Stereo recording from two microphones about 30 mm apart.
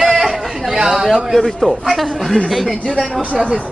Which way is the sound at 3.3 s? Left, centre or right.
Right.